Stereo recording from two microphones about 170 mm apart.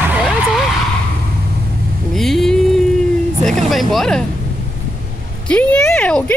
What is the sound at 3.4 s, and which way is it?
Speech, centre (ahead or behind).